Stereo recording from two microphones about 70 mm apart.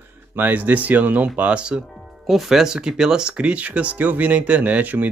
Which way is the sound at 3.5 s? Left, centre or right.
Centre.